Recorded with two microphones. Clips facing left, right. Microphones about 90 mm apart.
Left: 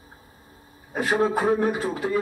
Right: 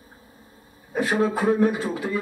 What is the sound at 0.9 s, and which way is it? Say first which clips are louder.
Speech: even; 20° left (ahead or behind).